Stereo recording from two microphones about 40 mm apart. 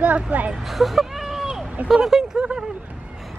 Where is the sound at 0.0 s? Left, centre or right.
Right.